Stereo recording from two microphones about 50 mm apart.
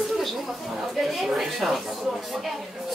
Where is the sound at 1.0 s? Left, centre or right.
Centre.